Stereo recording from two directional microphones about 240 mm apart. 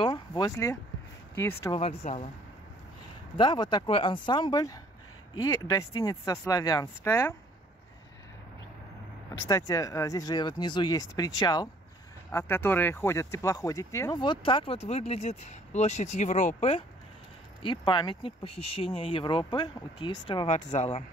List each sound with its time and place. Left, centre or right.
0.0 s a sound: centre
1.3 s speech: centre
1.8 s speech: left
3.3 s speech: centre
9.5 s speech: centre